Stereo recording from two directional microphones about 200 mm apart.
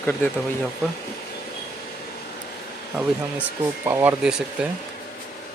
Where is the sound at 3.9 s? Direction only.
10° right (ahead or behind).